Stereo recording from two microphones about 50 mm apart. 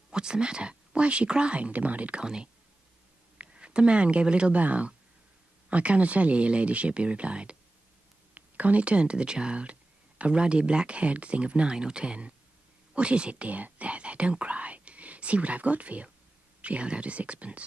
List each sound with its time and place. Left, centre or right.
0.1 s speech: centre
2.2 s speech: centre